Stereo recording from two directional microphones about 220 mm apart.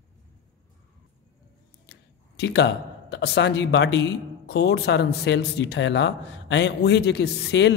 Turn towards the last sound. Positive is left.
turn(degrees=50)  # may be behind; listen again after turning